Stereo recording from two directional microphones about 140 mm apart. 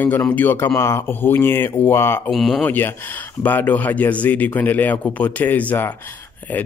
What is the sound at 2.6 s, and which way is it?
Speech, 15° left (ahead or behind).